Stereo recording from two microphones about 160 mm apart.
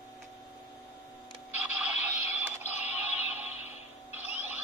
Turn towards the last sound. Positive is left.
turn(degrees=-10)  # may be behind; listen again after turning